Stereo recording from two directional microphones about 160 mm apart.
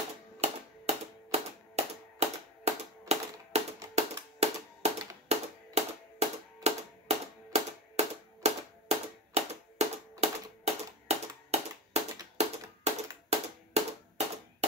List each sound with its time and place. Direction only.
0.4 s typewriter: 40° right (ahead or behind)
3.9 s music: 40° right (ahead or behind)
6.1 s a sound: 40° right (ahead or behind)